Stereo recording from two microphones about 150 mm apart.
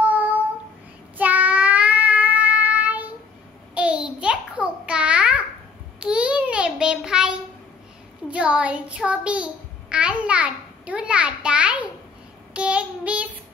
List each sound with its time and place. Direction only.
0.0 s child singing: 10° right (ahead or behind)
3.7 s a sound: 10° right (ahead or behind)
5.9 s child singing: 5° right (ahead or behind)